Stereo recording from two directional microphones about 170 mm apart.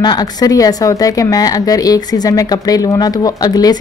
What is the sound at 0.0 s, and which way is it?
Speech, 25° left (ahead or behind).